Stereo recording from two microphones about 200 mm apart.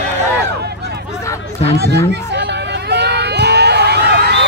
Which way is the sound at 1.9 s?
60° right (ahead or behind).